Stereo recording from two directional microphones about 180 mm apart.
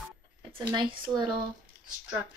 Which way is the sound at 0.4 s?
30° right (ahead or behind).